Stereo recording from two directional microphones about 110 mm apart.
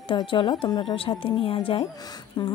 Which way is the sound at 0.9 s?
55° left (ahead or behind).